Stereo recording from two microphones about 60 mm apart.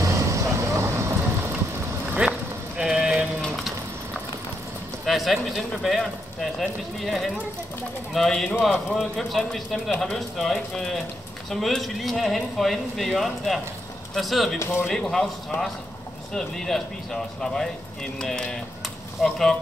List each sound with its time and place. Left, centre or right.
0.0 s vehicle: right
2.2 s vehicle: centre
2.8 s a sound: centre
3.4 s a sound: centre
5.0 s speech: centre
14.6 s speech: left
14.9 s speech: centre